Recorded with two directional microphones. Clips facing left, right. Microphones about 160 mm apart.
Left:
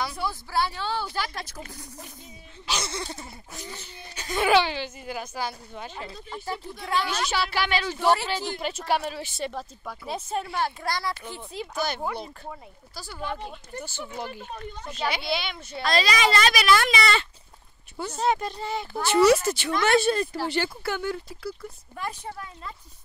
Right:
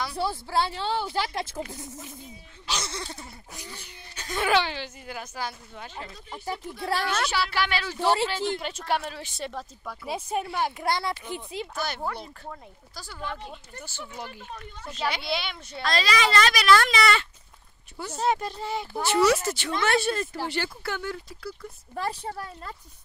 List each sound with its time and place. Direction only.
0.1 s speech: 30° right (ahead or behind)
2.6 s speech: 5° left (ahead or behind)
6.8 s a woman's voice: 35° right (ahead or behind)
7.2 s a woman's voice: 20° left (ahead or behind)
8.5 s speech: 10° left (ahead or behind)
10.0 s speech: 10° right (ahead or behind)
11.7 s a woman's voice: 15° left (ahead or behind)
14.9 s a child's voice: 5° left (ahead or behind)
15.8 s speech: 10° left (ahead or behind)
17.0 s a woman's voice: 25° left (ahead or behind)
18.1 s speech: 5° right (ahead or behind)
19.1 s a woman's voice: 10° left (ahead or behind)
21.9 s a woman's voice: 30° right (ahead or behind)